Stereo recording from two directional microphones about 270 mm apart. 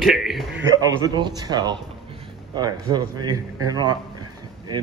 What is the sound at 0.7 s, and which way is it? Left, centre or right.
A man's voice, centre.